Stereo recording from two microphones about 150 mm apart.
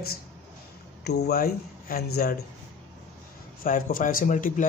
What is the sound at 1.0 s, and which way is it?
Speech, 90° left.